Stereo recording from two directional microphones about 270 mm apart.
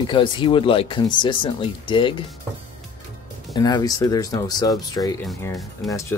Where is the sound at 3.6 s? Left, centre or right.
Centre.